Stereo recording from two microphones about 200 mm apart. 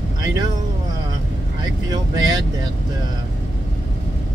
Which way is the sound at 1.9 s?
20° right (ahead or behind).